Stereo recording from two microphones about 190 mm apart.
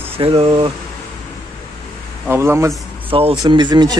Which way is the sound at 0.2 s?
30° right (ahead or behind).